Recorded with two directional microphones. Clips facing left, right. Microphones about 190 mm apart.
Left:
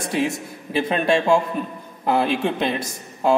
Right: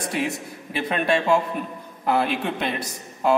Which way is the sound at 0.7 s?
30° left (ahead or behind).